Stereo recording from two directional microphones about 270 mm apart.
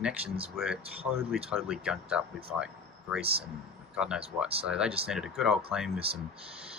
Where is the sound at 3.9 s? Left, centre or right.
Centre.